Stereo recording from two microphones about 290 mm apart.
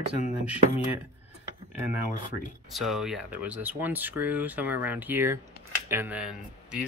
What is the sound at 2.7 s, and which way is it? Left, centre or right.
Speech, centre.